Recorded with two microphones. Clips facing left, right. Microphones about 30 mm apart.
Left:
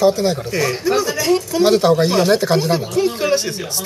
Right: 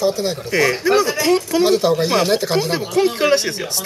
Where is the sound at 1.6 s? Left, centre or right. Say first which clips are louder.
Left 4 dB; centre.